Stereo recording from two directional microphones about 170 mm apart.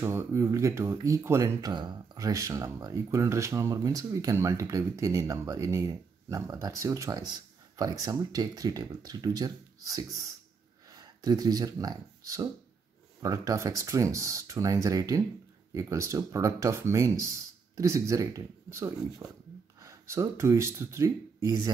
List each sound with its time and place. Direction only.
0.0 s speech: 15° right (ahead or behind)